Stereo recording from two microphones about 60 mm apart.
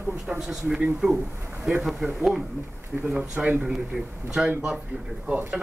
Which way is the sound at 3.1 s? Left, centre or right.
Centre.